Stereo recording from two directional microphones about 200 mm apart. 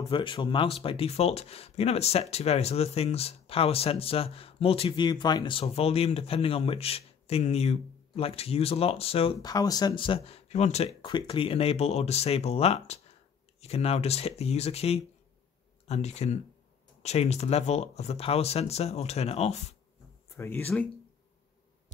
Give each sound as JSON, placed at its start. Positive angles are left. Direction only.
{"t": 0.1, "sound": "speech", "side_deg": 25}
{"t": 20.2, "sound": "speech", "side_deg": 10}